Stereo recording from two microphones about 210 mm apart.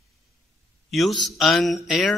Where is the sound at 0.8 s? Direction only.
Centre (ahead or behind).